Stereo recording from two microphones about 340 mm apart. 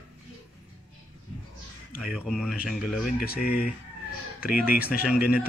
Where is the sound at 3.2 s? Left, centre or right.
Left.